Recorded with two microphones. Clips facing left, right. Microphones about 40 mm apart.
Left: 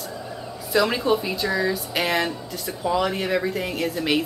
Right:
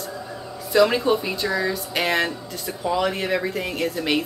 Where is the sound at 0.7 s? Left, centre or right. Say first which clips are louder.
Right 3 dB; centre.